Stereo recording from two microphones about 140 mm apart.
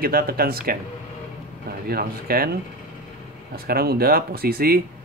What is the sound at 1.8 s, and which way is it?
A man's voice, 90° right.